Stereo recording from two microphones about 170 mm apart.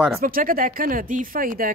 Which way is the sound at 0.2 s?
55° right (ahead or behind).